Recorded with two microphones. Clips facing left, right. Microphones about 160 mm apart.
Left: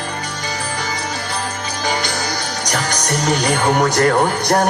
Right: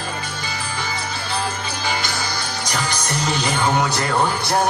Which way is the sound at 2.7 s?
45° left (ahead or behind).